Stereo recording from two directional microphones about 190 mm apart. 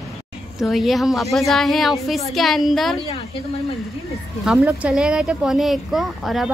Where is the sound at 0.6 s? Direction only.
Centre (ahead or behind).